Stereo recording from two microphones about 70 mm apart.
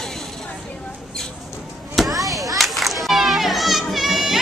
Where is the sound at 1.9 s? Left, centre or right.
Centre.